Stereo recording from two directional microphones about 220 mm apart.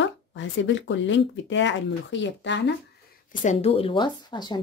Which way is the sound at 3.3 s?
35° left (ahead or behind).